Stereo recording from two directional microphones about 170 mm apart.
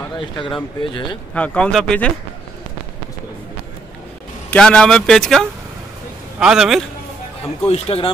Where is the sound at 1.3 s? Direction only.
5° left (ahead or behind).